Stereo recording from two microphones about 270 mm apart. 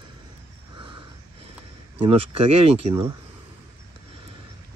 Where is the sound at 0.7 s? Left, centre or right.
Centre.